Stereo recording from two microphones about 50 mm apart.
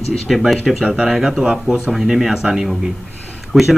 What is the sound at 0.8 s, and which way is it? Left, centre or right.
Speech, centre.